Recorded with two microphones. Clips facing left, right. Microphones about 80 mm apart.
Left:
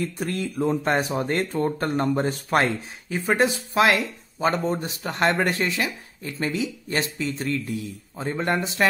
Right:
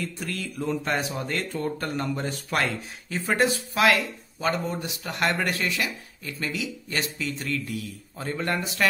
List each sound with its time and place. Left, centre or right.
0.0 s speech: left
3.1 s speech: centre